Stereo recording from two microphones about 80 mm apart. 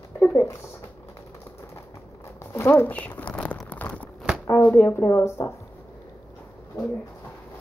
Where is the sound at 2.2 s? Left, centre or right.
Left.